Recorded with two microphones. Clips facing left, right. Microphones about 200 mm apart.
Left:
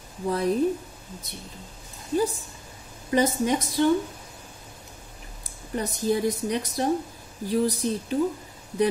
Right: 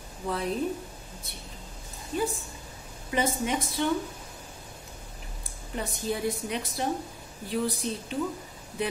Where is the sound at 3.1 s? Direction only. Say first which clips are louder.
Left 5 dB; 40° left (ahead or behind).